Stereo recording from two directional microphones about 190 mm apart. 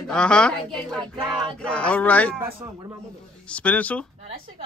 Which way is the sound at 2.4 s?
15° right (ahead or behind).